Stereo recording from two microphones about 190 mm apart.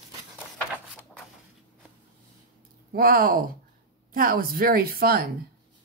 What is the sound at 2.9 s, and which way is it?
Speech, 50° right (ahead or behind).